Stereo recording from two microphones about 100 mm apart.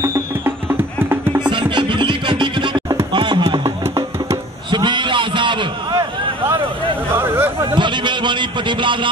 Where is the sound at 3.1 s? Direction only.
50° right (ahead or behind).